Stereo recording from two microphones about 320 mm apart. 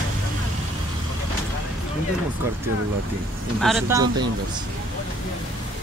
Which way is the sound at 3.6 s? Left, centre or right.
Centre.